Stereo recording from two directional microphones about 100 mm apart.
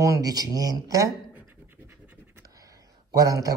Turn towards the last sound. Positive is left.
turn(degrees=-35)  # may be behind; listen again after turning